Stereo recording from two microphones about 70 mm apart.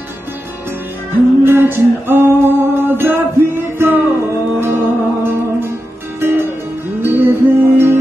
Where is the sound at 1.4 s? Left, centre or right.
Right.